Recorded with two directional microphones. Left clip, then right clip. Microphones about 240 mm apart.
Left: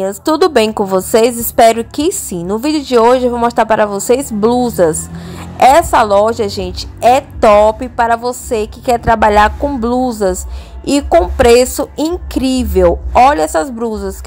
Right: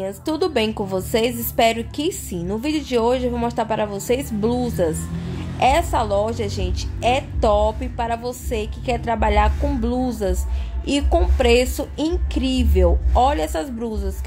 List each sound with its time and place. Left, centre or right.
0.0 s a woman's voice: left